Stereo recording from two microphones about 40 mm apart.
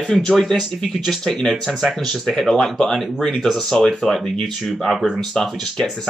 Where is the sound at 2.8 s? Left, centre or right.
Centre.